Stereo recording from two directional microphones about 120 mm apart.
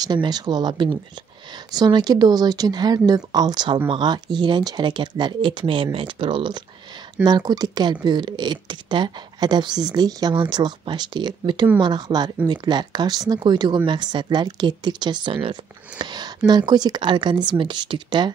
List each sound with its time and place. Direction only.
0.0 s speech: 35° right (ahead or behind)